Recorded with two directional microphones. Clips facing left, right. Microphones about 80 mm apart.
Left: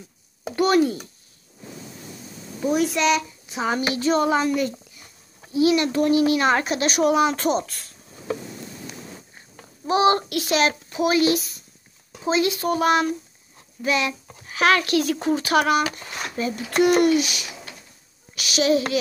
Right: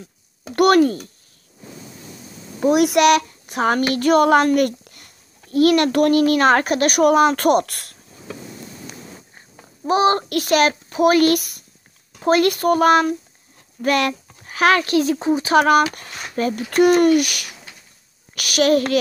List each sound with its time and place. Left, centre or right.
0.6 s speech: right
2.6 s a woman's voice: right
9.8 s speech: right
14.4 s a child's voice: right
15.1 s speech: centre
15.5 s speech: right
15.9 s a child's voice: right